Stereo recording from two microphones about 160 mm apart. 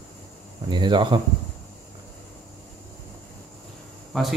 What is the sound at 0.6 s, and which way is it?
Speech, 30° right (ahead or behind).